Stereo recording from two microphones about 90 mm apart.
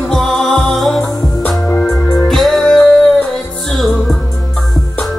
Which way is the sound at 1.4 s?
15° left (ahead or behind).